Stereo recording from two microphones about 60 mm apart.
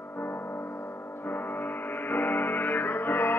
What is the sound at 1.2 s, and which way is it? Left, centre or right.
Music, left.